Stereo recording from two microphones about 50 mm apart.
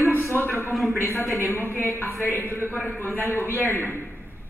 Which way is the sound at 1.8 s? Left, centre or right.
Left.